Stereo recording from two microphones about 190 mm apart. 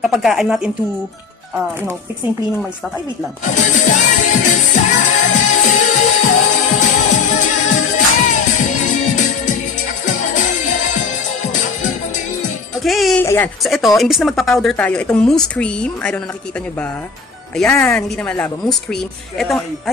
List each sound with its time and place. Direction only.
0.0 s speech: centre (ahead or behind)
3.4 s music: 40° left (ahead or behind)
12.8 s music: centre (ahead or behind)
13.2 s baby cry: 10° left (ahead or behind)
13.6 s speech: centre (ahead or behind)
17.6 s speech: 10° left (ahead or behind)